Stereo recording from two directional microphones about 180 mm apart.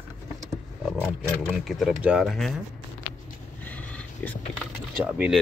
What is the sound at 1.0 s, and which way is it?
Speech, centre (ahead or behind).